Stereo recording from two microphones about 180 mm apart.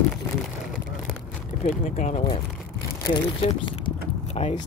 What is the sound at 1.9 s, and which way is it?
Speech, 35° left (ahead or behind).